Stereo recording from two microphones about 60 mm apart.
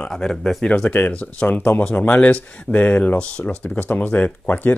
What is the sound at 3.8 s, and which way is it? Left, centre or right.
Speech, left.